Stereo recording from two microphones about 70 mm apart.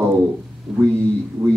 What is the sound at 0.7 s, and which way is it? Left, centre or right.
Speech, centre.